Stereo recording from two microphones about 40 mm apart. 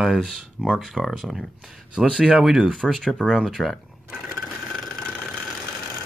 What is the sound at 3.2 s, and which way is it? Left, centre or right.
Speech, centre.